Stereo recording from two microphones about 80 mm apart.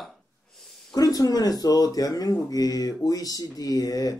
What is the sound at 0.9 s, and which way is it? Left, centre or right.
Speech, left.